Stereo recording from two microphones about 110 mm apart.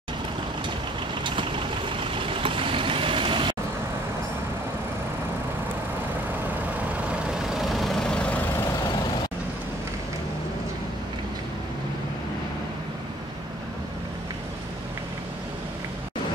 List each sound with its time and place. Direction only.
1.2 s vehicle: 50° right (ahead or behind)
7.1 s vehicle: 5° right (ahead or behind)